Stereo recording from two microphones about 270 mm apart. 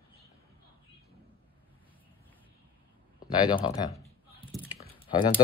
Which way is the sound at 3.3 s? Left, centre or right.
Centre.